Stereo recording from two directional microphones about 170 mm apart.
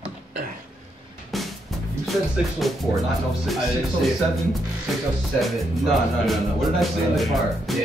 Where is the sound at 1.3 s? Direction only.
Centre (ahead or behind).